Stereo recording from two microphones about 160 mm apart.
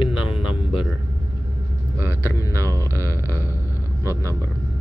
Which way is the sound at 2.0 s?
15° left (ahead or behind).